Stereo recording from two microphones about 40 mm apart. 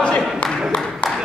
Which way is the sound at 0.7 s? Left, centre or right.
Left.